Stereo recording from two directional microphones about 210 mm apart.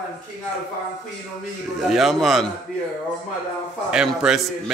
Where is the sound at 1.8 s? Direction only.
Centre (ahead or behind).